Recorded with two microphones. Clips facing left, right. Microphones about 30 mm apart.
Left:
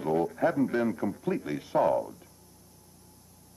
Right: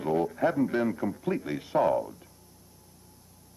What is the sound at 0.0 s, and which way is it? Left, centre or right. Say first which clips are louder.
Radio: even; right.